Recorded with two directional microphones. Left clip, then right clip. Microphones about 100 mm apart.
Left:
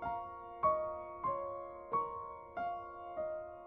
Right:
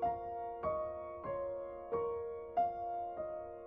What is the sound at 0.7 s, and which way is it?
Music, 40° left (ahead or behind).